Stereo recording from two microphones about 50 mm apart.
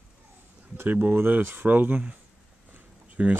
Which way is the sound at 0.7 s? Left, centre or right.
Right.